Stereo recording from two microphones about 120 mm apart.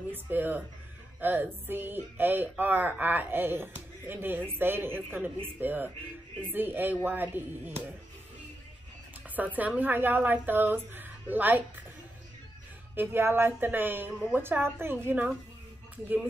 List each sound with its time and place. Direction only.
0.1 s speech: 15° right (ahead or behind)
9.3 s speech: 15° right (ahead or behind)
12.9 s speech: 20° right (ahead or behind)